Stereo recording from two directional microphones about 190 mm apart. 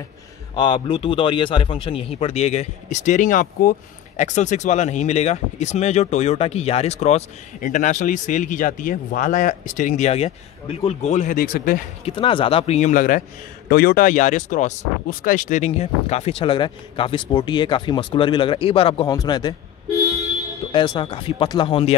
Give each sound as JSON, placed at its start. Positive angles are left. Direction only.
{"t": 0.6, "sound": "speech", "side_deg": 25}
{"t": 12.0, "sound": "speech", "side_deg": 25}
{"t": 20.7, "sound": "speech", "side_deg": 25}